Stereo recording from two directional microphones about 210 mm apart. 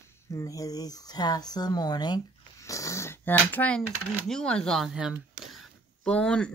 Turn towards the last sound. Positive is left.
turn(degrees=5)  # may be behind; listen again after turning